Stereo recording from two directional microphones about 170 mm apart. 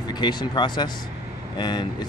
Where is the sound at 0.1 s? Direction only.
25° left (ahead or behind).